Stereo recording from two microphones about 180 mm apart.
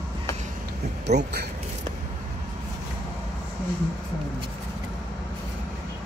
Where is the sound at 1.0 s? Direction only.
65° right (ahead or behind).